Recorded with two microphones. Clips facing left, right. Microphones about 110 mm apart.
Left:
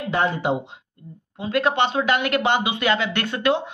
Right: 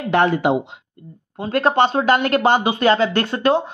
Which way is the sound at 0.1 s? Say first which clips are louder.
Right 6 dB; 70° right (ahead or behind).